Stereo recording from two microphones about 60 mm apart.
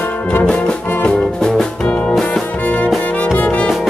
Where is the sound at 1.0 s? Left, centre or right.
Centre; by 3.6 s left.